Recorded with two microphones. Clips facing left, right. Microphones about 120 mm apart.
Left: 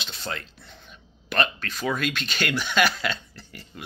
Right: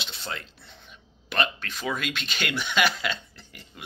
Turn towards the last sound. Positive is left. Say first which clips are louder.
# left 5 dB
turn(degrees=-15)  # may be behind; listen again after turning